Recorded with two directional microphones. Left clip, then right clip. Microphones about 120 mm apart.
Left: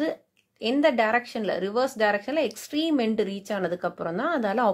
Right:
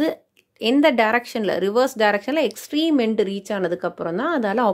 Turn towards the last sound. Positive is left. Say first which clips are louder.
# right 4 dB
turn(degrees=-40)  # may be behind; listen again after turning